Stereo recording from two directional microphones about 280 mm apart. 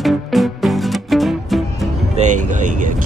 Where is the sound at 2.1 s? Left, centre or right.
Right.